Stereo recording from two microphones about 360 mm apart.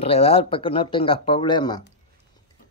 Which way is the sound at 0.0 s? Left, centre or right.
Centre.